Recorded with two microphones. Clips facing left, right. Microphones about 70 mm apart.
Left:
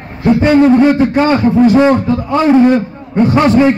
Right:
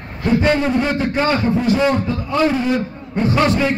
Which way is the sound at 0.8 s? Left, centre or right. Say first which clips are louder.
Left 8 dB; left.